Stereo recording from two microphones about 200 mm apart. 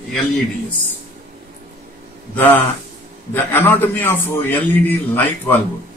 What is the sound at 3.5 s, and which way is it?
A man's voice, 10° left (ahead or behind).